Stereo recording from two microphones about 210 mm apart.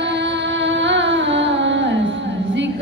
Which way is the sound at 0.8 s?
60° right (ahead or behind).